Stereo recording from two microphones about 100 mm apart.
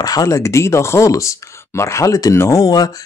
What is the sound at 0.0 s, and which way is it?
Speech, 40° left (ahead or behind).